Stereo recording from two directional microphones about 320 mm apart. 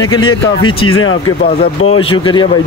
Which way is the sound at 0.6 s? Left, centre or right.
Centre.